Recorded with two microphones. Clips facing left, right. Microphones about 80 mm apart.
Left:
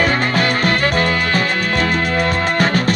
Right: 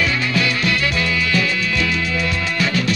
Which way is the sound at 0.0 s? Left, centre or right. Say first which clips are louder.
Left 4 dB; left.